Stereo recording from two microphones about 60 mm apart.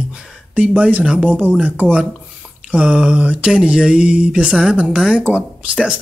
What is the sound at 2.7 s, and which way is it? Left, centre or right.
Speech, centre.